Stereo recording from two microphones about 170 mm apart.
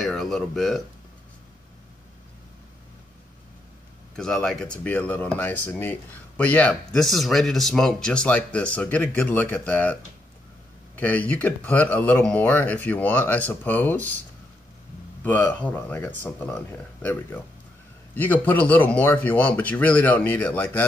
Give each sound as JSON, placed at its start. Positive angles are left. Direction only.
{"t": 0.0, "sound": "speech", "side_deg": 0}
{"t": 4.2, "sound": "speech", "side_deg": 5}
{"t": 11.0, "sound": "speech", "side_deg": 10}
{"t": 15.2, "sound": "speech", "side_deg": 10}